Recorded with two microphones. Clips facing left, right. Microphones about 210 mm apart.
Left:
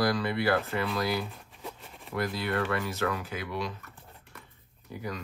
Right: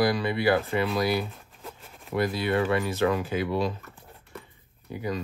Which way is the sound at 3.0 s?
25° right (ahead or behind).